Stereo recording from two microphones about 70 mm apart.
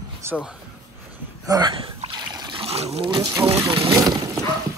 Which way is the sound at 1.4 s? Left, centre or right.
Right.